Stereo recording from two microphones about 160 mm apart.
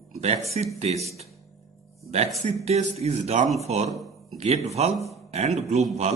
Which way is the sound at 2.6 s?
40° right (ahead or behind).